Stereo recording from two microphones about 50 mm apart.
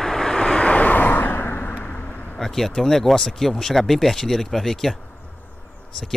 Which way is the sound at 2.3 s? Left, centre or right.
Centre.